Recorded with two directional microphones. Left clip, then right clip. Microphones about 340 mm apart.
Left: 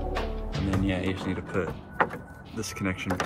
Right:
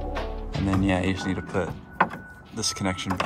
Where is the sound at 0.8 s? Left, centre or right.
Right.